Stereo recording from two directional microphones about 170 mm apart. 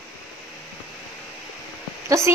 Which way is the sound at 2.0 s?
15° right (ahead or behind).